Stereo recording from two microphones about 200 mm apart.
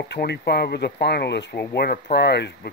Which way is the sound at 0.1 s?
55° left (ahead or behind).